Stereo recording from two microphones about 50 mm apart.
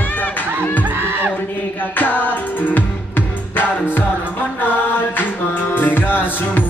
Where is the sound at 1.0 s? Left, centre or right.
Right.